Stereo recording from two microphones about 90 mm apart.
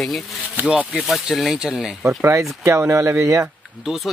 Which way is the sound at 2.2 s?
30° right (ahead or behind).